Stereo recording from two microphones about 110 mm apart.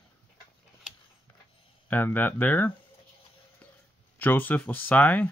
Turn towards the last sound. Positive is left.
turn(degrees=15)  # may be behind; listen again after turning